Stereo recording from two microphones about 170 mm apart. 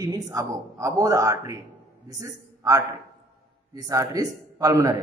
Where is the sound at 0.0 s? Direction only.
20° right (ahead or behind).